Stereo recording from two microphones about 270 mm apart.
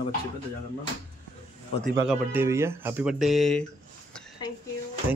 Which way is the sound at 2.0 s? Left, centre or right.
Centre.